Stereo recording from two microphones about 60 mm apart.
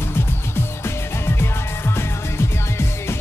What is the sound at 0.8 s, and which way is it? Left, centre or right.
Music, left.